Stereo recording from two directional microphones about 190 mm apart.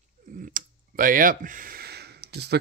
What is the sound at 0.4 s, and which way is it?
Speech, 45° right (ahead or behind).